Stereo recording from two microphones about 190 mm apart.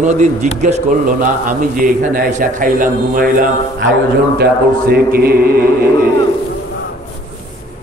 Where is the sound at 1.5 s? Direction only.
45° right (ahead or behind).